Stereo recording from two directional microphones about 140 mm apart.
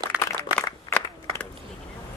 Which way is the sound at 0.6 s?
15° left (ahead or behind).